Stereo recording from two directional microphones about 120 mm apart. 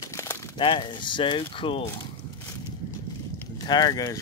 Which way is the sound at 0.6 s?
40° left (ahead or behind).